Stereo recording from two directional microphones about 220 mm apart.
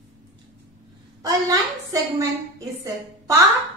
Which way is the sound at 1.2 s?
15° right (ahead or behind).